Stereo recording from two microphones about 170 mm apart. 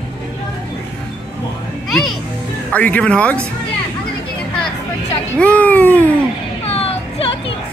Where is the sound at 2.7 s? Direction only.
10° left (ahead or behind).